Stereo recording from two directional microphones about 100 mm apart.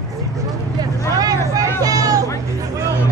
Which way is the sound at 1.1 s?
35° right (ahead or behind).